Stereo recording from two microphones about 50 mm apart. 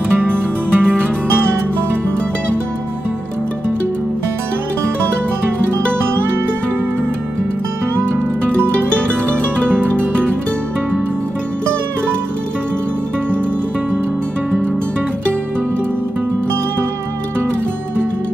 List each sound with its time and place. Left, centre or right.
0.3 s music: centre
8.7 s music: left